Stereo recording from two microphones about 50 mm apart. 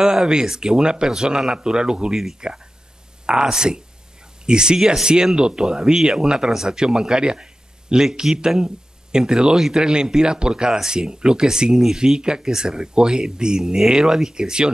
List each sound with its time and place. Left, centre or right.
0.0 s speech: centre